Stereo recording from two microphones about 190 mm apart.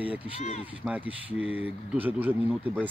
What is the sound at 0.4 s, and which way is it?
Speech, 35° left (ahead or behind).